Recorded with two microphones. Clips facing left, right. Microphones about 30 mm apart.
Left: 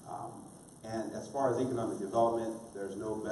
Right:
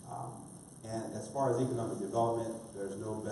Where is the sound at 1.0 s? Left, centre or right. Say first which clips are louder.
Left 1 dB; centre.